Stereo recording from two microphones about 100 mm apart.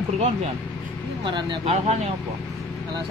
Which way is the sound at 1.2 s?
50° right (ahead or behind).